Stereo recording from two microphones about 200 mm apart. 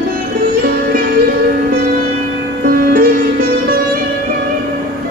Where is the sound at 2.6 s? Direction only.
45° right (ahead or behind).